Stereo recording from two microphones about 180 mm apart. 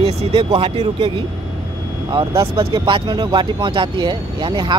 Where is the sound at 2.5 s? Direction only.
30° right (ahead or behind).